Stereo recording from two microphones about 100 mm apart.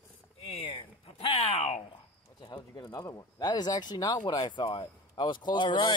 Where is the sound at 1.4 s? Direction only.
90° left.